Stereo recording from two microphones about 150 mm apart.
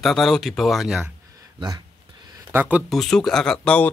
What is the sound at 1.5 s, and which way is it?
Speech, 30° right (ahead or behind).